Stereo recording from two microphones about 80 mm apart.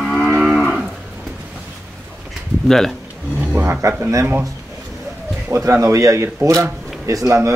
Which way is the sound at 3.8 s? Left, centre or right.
Right.